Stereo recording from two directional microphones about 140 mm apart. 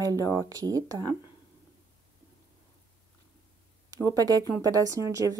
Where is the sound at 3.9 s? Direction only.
25° right (ahead or behind).